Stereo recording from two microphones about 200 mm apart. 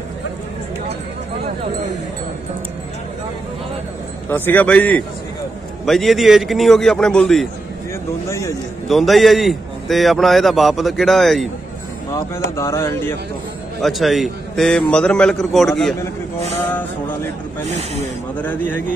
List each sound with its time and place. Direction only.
4.3 s a man's voice: 10° left (ahead or behind)
8.3 s a man's voice: 15° left (ahead or behind)
8.8 s a man's voice: centre (ahead or behind)
12.5 s a man's voice: 15° left (ahead or behind)
13.7 s a man's voice: centre (ahead or behind)
17.6 s speech: 35° right (ahead or behind)
18.4 s a man's voice: 10° left (ahead or behind)